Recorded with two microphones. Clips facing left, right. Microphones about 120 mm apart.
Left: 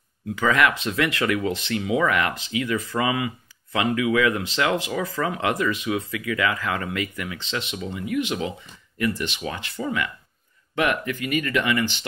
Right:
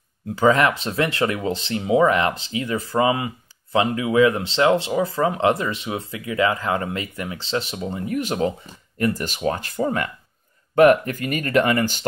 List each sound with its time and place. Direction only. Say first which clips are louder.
0.4 s speech: right 4 dB; 30° right (ahead or behind)